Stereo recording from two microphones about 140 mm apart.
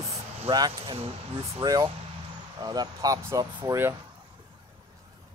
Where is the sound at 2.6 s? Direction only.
25° right (ahead or behind).